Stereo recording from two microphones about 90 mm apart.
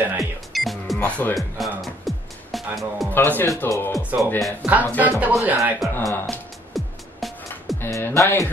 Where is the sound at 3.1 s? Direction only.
20° left (ahead or behind).